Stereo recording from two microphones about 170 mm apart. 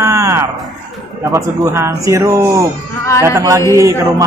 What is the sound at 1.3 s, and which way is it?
Speech, 20° right (ahead or behind).